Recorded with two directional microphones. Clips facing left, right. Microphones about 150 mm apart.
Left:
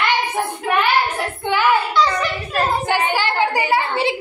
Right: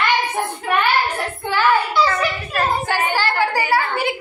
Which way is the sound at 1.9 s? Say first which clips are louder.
Even; 5° right (ahead or behind).